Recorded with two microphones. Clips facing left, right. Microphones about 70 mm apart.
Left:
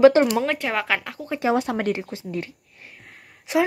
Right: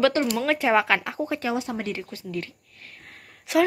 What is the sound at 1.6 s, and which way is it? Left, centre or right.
Speech, left.